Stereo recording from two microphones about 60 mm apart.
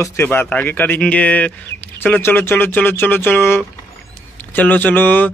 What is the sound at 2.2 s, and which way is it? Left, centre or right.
Speech, left.